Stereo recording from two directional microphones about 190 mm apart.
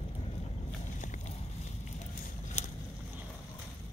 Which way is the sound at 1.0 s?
40° left (ahead or behind).